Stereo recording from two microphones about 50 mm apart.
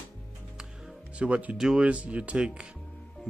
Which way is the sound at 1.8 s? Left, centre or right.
Right.